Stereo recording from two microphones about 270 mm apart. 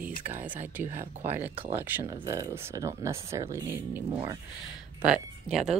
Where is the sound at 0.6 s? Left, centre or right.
Centre.